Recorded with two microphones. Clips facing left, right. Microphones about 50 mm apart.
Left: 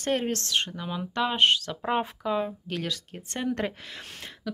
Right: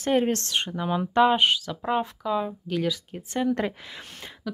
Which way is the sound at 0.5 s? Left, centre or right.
Centre.